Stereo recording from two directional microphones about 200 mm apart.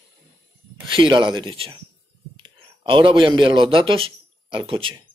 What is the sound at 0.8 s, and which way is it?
A man's voice, 25° right (ahead or behind).